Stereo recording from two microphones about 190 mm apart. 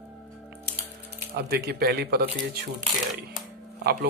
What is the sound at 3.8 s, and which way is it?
Speech, 55° right (ahead or behind).